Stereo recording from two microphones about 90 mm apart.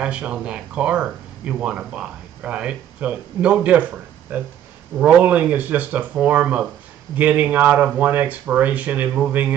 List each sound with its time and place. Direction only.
0.0 s speech: 10° right (ahead or behind)